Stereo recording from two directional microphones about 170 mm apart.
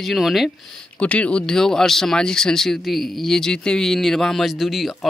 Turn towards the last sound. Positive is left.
turn(degrees=0)  # may be behind; listen again after turning